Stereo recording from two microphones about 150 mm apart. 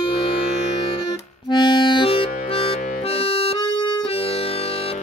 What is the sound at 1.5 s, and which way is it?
Music, 30° left (ahead or behind).